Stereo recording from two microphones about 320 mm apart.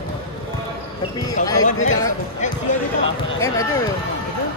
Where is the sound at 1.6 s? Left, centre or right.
Left.